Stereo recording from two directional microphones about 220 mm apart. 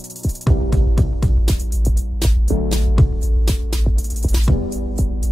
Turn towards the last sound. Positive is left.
turn(degrees=0)  # may be behind; listen again after turning